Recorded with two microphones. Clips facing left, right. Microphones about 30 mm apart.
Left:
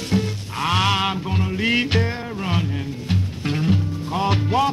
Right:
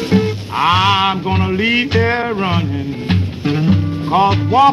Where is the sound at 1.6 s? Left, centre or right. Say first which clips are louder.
Right 3 dB; centre.